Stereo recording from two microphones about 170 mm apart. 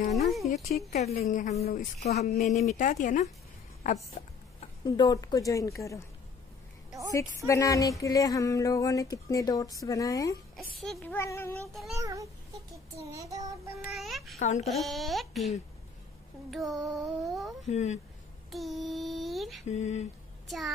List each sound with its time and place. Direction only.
0.7 s a woman's voice: 40° left (ahead or behind)
1.1 s a woman's voice: 55° left (ahead or behind)
4.8 s speech: 25° left (ahead or behind)
7.4 s speech: 20° left (ahead or behind)
10.8 s child singing: 5° left (ahead or behind)
11.7 s a sound: centre (ahead or behind)
12.0 s a child's voice: 20° right (ahead or behind)
12.7 s child singing: 20° right (ahead or behind)
13.9 s a sound: centre (ahead or behind)
17.6 s a woman's voice: 40° left (ahead or behind)
18.5 s a sound: centre (ahead or behind)
19.7 s a woman's voice: 40° left (ahead or behind)
20.4 s a child's voice: centre (ahead or behind)